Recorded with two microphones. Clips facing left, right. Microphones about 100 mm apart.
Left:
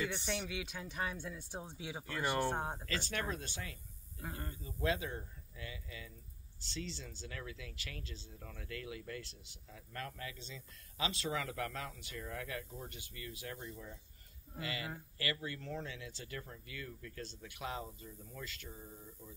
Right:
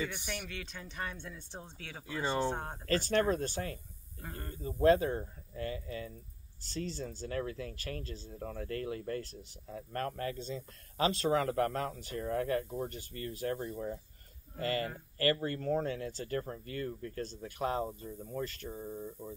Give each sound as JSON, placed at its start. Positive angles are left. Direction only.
{"t": 0.3, "sound": "speech", "side_deg": 15}
{"t": 2.0, "sound": "speech", "side_deg": -15}
{"t": 2.5, "sound": "speech", "side_deg": 10}
{"t": 2.9, "sound": "speech", "side_deg": -45}
{"t": 4.2, "sound": "speech", "side_deg": 15}
{"t": 4.6, "sound": "speech", "side_deg": -50}
{"t": 14.6, "sound": "speech", "side_deg": -45}